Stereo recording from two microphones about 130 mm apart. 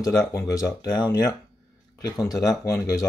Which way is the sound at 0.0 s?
25° left (ahead or behind).